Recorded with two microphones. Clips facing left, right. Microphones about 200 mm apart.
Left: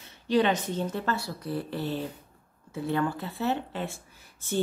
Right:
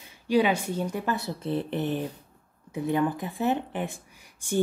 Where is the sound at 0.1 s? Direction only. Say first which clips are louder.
Right 1 dB; 10° right (ahead or behind).